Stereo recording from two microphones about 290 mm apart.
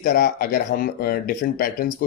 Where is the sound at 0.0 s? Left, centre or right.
Left.